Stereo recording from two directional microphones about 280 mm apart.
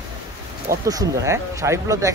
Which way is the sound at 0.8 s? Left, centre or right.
Centre.